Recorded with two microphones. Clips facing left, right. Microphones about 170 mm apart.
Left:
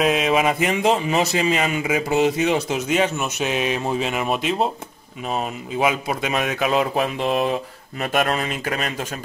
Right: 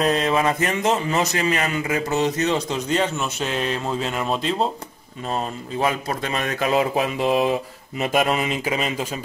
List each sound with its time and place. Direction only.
0.0 s a man's voice: 5° left (ahead or behind)